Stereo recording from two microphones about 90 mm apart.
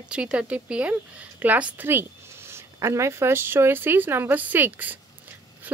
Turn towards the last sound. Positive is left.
turn(degrees=-20)  # may be behind; listen again after turning